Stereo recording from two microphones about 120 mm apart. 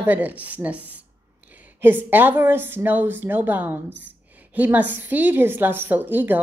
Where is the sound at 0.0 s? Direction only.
15° right (ahead or behind).